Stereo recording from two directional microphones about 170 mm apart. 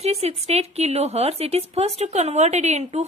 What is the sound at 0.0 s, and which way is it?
A woman's voice, 40° right (ahead or behind).